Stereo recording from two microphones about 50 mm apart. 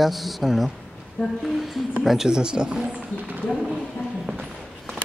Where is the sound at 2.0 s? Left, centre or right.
Centre.